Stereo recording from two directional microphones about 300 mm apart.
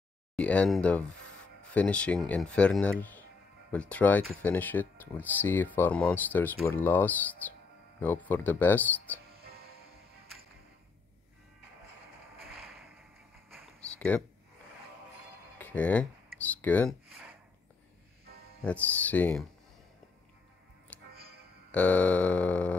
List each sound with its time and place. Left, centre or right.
0.4 s speech: centre
9.3 s music: right
13.7 s a sound: centre
15.6 s speech: centre
18.6 s speech: centre
20.9 s music: centre
21.7 s speech: centre